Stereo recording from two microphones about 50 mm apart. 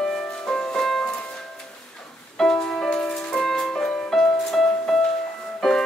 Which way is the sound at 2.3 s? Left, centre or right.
Centre.